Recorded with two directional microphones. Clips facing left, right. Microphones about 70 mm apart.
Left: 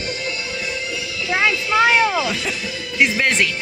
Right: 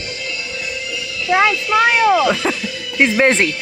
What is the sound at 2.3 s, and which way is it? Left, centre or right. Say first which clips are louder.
Speech: right 6 dB; right.